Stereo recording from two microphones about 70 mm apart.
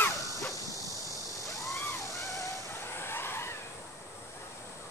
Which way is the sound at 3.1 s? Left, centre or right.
Left.